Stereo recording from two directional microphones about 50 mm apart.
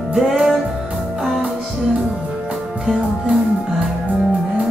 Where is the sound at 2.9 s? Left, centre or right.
Right.